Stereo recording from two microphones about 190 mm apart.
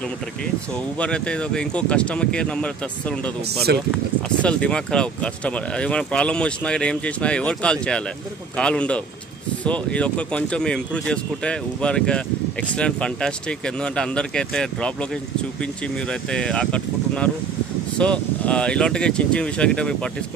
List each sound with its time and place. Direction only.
0.9 s speech: 5° left (ahead or behind)
3.4 s speech: 60° right (ahead or behind)
3.9 s speech: 5° left (ahead or behind)